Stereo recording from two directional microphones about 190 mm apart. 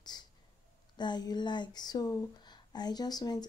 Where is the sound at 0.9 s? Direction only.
20° left (ahead or behind).